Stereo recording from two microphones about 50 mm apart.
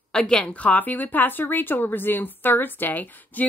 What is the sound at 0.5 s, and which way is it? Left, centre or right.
Speech, left.